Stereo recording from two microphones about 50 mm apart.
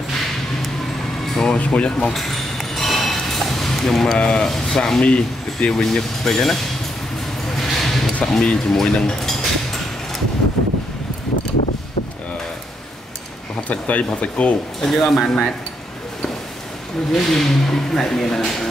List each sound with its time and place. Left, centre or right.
1.2 s music: centre
1.6 s speech: left
2.1 s ping: centre
4.3 s speech: centre
5.0 s speech: left
5.8 s speech: centre
7.4 s a sound: centre
8.2 s speech: centre
13.7 s speech: left
14.8 s speech: centre
17.1 s speech: centre